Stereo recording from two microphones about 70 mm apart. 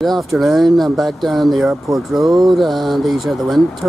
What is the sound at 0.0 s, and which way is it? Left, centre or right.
Speech, centre.